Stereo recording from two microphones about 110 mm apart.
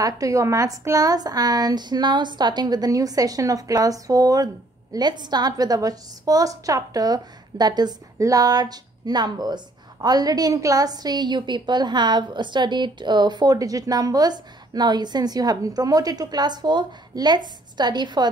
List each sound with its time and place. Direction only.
0.0 s a woman's voice: 30° right (ahead or behind)